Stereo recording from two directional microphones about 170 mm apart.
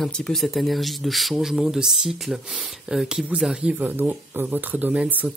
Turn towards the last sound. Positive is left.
turn(degrees=-10)  # may be behind; listen again after turning